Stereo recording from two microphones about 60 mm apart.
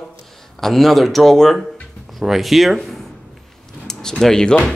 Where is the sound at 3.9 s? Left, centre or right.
Centre.